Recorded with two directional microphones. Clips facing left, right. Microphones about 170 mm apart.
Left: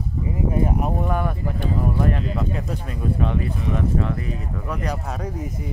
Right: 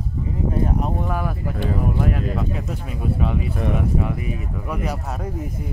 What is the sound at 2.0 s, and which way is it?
Speech, 5° right (ahead or behind).